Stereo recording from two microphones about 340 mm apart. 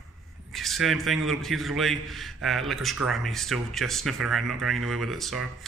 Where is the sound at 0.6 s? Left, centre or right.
Centre.